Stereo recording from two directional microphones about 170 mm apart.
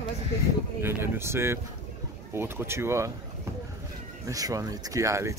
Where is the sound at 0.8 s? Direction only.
15° right (ahead or behind).